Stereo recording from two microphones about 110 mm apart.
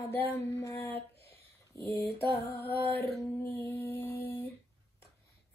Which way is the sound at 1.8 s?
30° left (ahead or behind).